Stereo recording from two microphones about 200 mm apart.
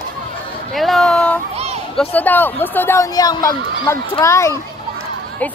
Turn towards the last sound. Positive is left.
turn(degrees=15)  # may be behind; listen again after turning